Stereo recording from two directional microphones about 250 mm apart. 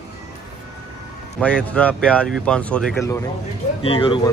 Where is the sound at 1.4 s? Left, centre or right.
Centre.